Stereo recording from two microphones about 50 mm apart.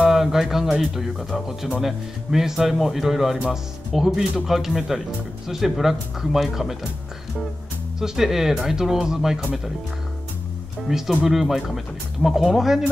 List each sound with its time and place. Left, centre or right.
0.1 s speech: centre
8.0 s speech: centre
10.9 s speech: centre